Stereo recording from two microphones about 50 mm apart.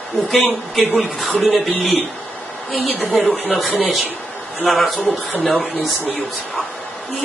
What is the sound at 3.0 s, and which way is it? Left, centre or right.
Speech, centre.